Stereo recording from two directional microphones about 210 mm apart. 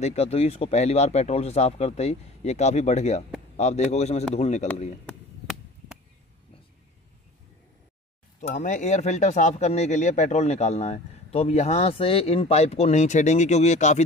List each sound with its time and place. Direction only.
0.0 s speech: 30° left (ahead or behind)
5.0 s chop: centre (ahead or behind)
8.4 s speech: 35° left (ahead or behind)